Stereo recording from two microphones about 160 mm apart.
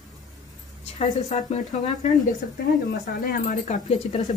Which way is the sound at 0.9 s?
45° left (ahead or behind).